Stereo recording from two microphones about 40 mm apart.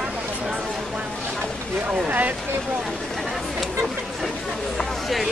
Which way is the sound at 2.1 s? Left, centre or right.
Right.